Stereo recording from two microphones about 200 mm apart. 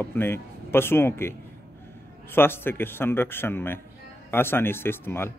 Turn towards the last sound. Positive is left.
turn(degrees=10)  # may be behind; listen again after turning